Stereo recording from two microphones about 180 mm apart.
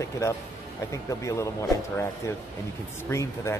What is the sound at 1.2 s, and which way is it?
Speech, 15° left (ahead or behind).